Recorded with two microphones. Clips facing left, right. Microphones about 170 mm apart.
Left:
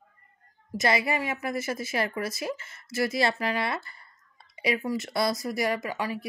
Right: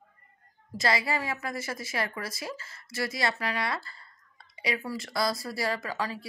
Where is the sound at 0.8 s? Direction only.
20° left (ahead or behind).